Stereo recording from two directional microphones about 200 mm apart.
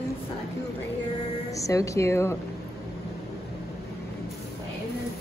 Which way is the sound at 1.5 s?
15° left (ahead or behind).